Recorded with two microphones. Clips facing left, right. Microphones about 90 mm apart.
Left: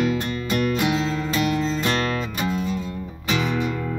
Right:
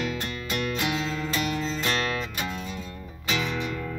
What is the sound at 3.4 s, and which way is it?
Music, 15° left (ahead or behind).